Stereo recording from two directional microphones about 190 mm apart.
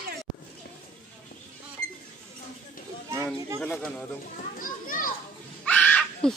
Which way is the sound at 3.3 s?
15° right (ahead or behind).